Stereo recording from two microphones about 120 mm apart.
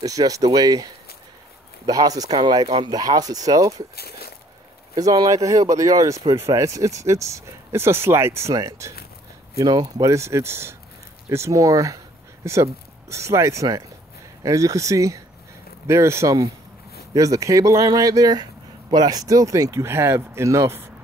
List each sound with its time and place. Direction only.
0.0 s speech: 30° right (ahead or behind)
2.6 s speech: 50° right (ahead or behind)
2.9 s speech: 30° right (ahead or behind)
4.9 s speech: 30° right (ahead or behind)
13.1 s speech: 25° right (ahead or behind)